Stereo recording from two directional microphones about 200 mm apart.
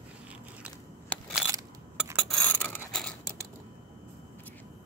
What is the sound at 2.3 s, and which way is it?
Filing, 10° left (ahead or behind).